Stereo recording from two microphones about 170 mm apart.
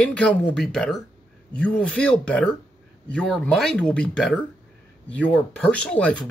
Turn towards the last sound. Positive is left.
turn(degrees=5)  # may be behind; listen again after turning